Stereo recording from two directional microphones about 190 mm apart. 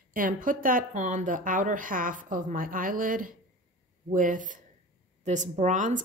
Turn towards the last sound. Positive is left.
turn(degrees=-40)  # may be behind; listen again after turning